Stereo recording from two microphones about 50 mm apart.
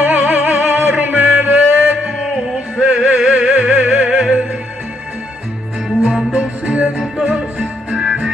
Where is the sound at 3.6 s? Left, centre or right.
Right.